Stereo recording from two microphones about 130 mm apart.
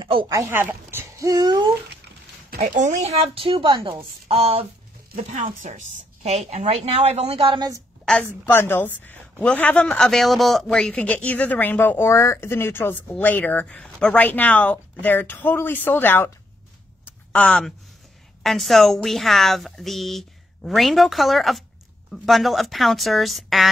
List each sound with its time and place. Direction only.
0.0 s a sound: 40° right (ahead or behind)
0.3 s speech: 20° right (ahead or behind)
1.3 s babbling: 35° right (ahead or behind)
2.8 s a woman's voice: 60° right (ahead or behind)
5.1 s a woman's voice: 85° right; by 7.6 s 45° right (ahead or behind)
8.3 s a woman's voice: 15° left (ahead or behind)
17.3 s a woman's voice: 10° left (ahead or behind)